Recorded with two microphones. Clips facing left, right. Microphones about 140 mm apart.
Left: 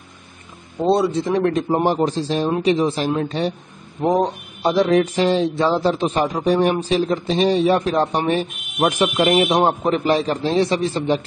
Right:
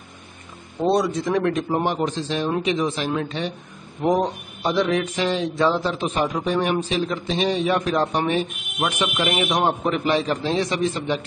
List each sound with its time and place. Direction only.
0.8 s speech: 25° left (ahead or behind)
1.9 s mantra: 35° left (ahead or behind)